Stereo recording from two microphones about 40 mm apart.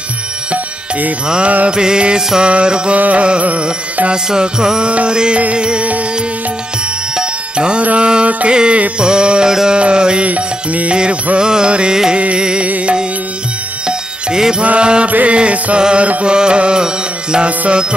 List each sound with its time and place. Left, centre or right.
1.7 s music: right
4.1 s music: centre
7.2 s music: right
9.8 s music: right
10.2 s music: right
11.3 s music: right
12.6 s music: right
13.8 s music: centre
15.0 s music: right
15.3 s music: right